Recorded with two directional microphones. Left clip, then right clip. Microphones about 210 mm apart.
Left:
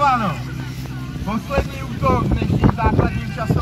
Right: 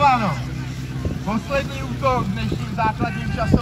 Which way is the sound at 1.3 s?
50° left (ahead or behind).